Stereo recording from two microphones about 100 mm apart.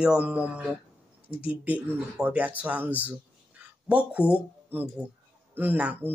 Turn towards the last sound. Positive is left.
turn(degrees=-15)  # may be behind; listen again after turning